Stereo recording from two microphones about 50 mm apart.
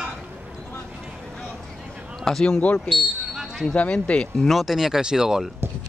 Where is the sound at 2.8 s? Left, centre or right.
Centre.